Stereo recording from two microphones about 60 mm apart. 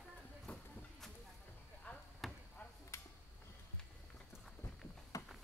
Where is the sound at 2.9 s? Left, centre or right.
Left.